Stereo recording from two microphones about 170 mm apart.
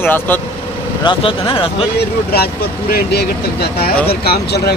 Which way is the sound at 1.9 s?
70° left (ahead or behind).